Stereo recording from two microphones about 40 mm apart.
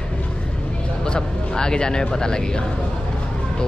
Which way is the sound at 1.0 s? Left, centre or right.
Centre.